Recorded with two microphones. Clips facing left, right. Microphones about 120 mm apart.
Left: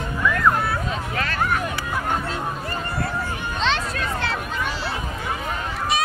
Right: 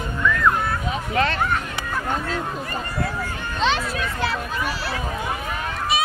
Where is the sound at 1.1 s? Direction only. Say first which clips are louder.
Right 10 dB; 25° right (ahead or behind).